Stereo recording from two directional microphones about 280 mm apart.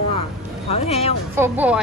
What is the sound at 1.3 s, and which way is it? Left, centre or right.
Speech, centre.